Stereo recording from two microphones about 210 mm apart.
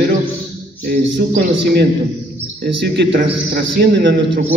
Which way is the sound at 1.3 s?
45° right (ahead or behind).